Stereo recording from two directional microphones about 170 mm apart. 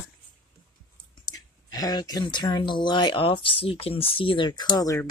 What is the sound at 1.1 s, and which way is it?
Speech, 25° left (ahead or behind).